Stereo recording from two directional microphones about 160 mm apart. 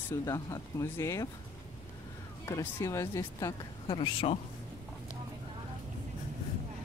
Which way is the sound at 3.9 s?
30° left (ahead or behind).